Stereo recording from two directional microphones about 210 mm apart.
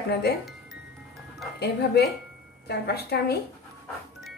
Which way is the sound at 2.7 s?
50° left (ahead or behind).